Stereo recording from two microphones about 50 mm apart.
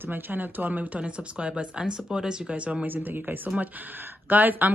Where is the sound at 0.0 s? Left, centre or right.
Right.